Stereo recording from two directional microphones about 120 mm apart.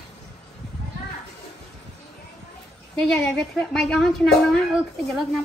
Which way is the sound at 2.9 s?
5° left (ahead or behind).